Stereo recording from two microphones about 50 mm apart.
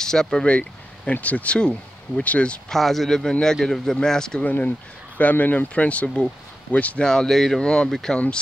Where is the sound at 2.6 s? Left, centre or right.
Centre.